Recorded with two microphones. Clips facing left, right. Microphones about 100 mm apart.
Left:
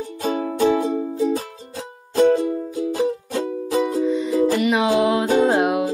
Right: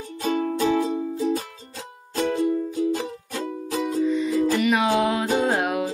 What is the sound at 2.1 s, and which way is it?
Music, 40° left (ahead or behind).